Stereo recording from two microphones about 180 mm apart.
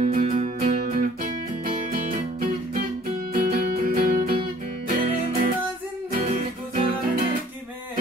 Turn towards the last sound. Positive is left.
turn(degrees=-50)  # may be behind; listen again after turning